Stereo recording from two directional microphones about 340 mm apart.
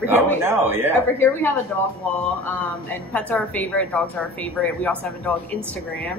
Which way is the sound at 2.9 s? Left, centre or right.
Centre.